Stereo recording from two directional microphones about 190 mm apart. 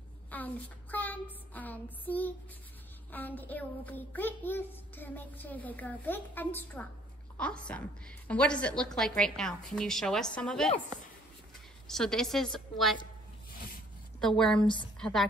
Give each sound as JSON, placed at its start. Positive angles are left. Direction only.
{"t": 0.3, "sound": "a sound", "side_deg": 10}
{"t": 3.1, "sound": "a child's voice", "side_deg": 10}
{"t": 11.9, "sound": "a woman's voice", "side_deg": 5}
{"t": 14.2, "sound": "a woman's voice", "side_deg": 5}
{"t": 14.6, "sound": "a woman's voice", "side_deg": 25}
{"t": 15.0, "sound": "a woman's voice", "side_deg": 5}